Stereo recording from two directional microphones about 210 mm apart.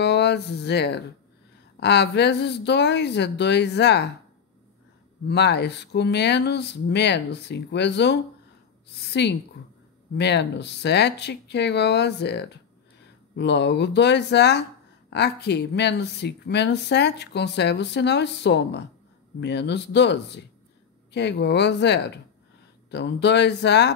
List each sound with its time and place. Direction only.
0.0 s speech: 55° left (ahead or behind)
5.3 s speech: 55° left (ahead or behind)
9.2 s speech: 55° left (ahead or behind)